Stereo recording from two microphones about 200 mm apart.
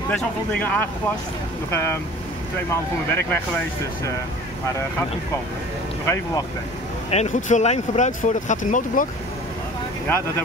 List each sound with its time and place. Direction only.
0.1 s speech: 10° left (ahead or behind)
7.1 s speech: 35° left (ahead or behind)
10.0 s speech: 15° left (ahead or behind)